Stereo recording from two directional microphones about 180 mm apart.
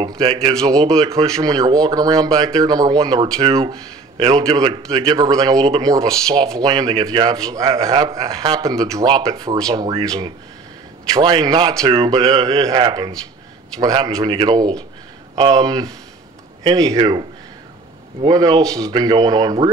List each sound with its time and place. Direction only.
0.2 s speech: 30° right (ahead or behind)
6.0 s speech: 5° left (ahead or behind)
6.5 s speech: 20° right (ahead or behind)